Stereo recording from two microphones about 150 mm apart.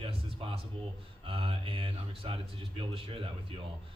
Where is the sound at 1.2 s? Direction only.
35° right (ahead or behind).